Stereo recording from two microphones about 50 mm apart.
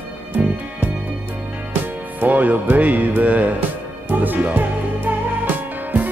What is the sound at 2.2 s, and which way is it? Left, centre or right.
Music, right.